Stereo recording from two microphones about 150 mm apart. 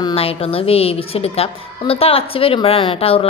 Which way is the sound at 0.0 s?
40° left (ahead or behind).